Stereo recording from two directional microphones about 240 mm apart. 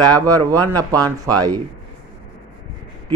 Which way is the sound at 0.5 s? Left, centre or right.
Centre.